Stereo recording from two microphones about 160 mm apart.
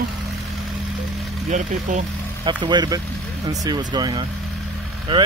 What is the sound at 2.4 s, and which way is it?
Speech, 30° right (ahead or behind).